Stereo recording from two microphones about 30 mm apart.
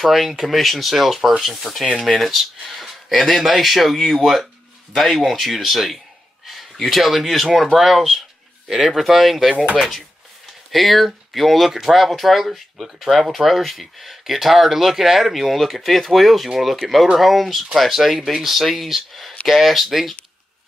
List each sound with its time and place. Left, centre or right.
0.0 s speech: centre
2.0 s speech: centre
10.7 s speech: centre
13.3 s speech: centre